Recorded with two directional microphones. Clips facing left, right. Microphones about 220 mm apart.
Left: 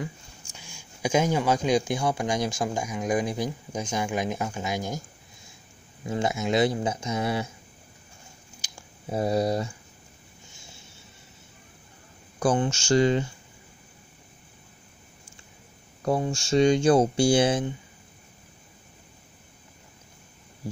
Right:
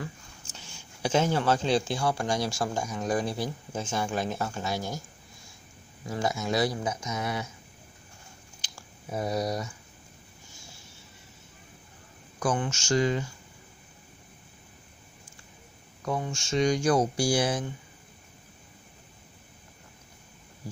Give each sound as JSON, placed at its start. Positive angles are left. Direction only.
{"t": 0.5, "sound": "speech", "side_deg": 10}
{"t": 6.0, "sound": "speech", "side_deg": 25}
{"t": 8.5, "sound": "a sound", "side_deg": 10}
{"t": 9.1, "sound": "speech", "side_deg": 30}
{"t": 12.4, "sound": "speech", "side_deg": 30}
{"t": 16.1, "sound": "speech", "side_deg": 35}